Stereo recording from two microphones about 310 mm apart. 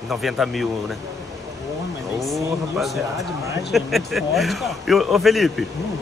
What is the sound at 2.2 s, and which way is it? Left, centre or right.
Speech, centre.